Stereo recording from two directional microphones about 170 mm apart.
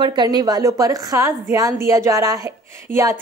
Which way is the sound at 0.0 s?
25° right (ahead or behind).